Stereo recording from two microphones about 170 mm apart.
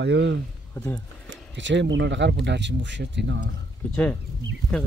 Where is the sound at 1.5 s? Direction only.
90° right.